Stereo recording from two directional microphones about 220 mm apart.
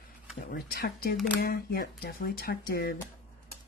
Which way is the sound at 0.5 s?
45° left (ahead or behind).